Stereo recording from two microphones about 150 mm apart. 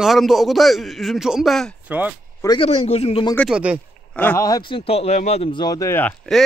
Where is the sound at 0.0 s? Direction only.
Centre (ahead or behind).